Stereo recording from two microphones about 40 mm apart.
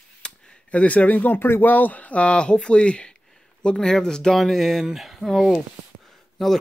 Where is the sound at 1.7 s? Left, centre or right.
Left; by 4.3 s centre.